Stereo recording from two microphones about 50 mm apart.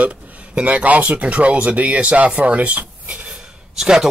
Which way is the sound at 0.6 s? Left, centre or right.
Right.